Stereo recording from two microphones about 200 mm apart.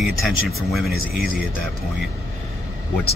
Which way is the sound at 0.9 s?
45° left (ahead or behind).